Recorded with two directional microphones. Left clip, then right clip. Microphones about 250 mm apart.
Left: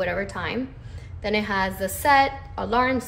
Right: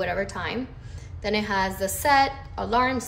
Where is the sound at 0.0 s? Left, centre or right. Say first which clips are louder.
Left 1 dB; centre.